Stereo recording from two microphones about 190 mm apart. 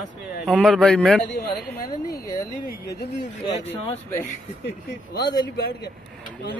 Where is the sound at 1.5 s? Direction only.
55° left (ahead or behind).